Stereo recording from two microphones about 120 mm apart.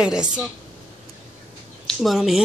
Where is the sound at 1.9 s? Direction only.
Centre (ahead or behind).